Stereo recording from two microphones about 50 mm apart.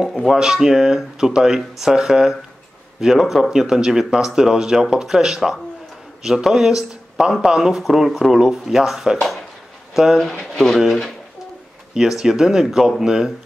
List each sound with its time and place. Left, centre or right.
0.3 s speech: centre